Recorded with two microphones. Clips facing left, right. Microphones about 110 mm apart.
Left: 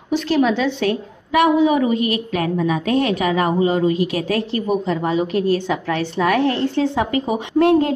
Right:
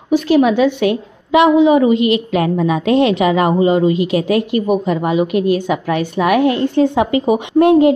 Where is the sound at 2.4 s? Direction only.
35° right (ahead or behind).